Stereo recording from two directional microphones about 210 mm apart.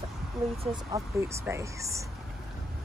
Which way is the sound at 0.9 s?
15° right (ahead or behind).